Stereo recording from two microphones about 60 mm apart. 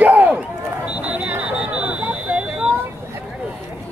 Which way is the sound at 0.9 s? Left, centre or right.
Right.